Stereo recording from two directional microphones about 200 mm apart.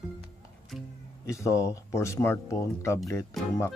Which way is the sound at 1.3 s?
15° left (ahead or behind).